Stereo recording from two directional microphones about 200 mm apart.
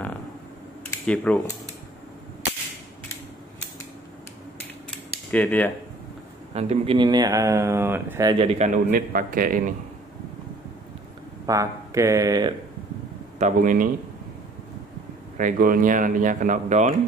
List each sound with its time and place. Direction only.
0.8 s speech: 5° left (ahead or behind)
5.3 s speech: 10° left (ahead or behind)
6.5 s speech: 30° right (ahead or behind)
11.4 s speech: 15° right (ahead or behind)
13.4 s speech: 40° right (ahead or behind)
15.3 s speech: 40° right (ahead or behind)